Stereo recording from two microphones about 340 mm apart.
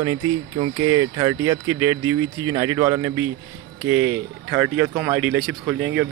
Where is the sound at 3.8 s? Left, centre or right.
Right.